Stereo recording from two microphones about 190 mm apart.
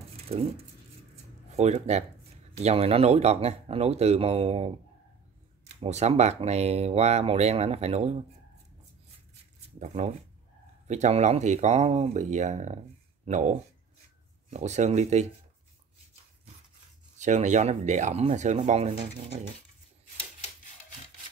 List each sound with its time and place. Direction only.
1.5 s speech: 35° right (ahead or behind)
5.8 s speech: 35° right (ahead or behind)
9.8 s speech: 35° right (ahead or behind)
17.2 s speech: 40° right (ahead or behind)